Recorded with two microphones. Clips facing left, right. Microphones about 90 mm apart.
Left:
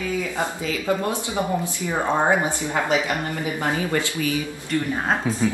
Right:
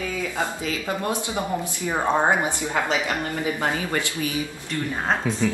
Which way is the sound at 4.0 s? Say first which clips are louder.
Left 2 dB; 25° right (ahead or behind).